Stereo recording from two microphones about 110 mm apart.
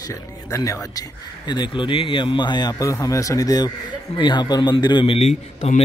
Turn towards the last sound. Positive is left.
turn(degrees=80)